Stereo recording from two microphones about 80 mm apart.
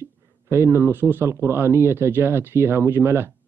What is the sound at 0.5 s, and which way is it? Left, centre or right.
A man's voice, right.